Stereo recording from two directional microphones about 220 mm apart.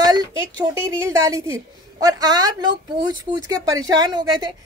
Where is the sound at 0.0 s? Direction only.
15° right (ahead or behind).